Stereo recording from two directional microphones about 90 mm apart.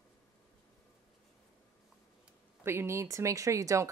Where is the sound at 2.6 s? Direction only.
25° right (ahead or behind).